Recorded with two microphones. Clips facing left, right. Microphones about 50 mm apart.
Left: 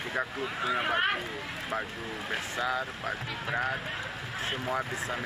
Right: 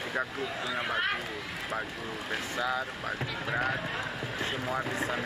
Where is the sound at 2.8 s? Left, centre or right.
Centre.